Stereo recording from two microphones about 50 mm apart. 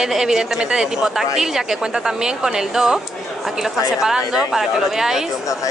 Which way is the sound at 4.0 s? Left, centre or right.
Centre.